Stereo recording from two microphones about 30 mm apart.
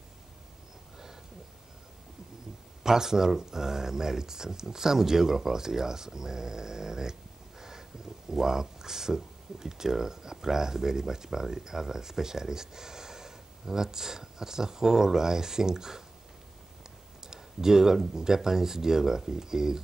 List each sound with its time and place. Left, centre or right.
2.8 s speech: centre
17.3 s speech: centre